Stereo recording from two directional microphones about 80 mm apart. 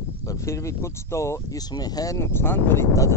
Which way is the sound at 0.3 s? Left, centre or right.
Left.